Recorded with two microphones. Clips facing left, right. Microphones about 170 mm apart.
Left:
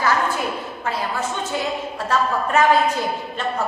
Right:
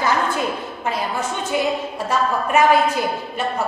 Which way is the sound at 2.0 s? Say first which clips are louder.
Even; 10° right (ahead or behind).